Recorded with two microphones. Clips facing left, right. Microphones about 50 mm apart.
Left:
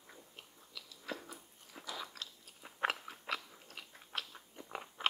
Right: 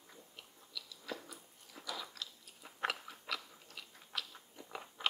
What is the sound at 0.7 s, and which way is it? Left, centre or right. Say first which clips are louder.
Biting: left 1 dB; left.